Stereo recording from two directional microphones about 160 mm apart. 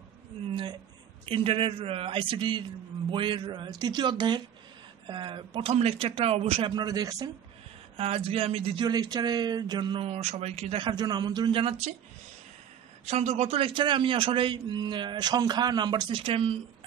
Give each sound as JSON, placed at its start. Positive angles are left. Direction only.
{"t": 1.2, "sound": "speech", "side_deg": -35}
{"t": 6.7, "sound": "speech", "side_deg": -25}
{"t": 8.0, "sound": "speech", "side_deg": -35}
{"t": 13.0, "sound": "speech", "side_deg": -40}